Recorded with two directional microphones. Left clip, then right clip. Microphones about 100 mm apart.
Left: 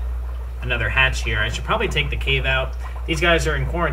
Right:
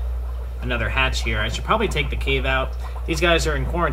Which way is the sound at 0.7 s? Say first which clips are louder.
Left 3 dB; 5° right (ahead or behind).